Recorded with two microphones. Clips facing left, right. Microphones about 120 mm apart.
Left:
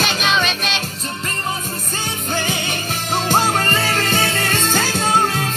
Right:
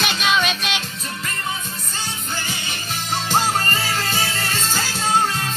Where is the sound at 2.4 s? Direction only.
55° left (ahead or behind).